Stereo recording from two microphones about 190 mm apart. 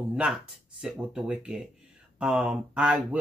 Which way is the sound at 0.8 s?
5° right (ahead or behind).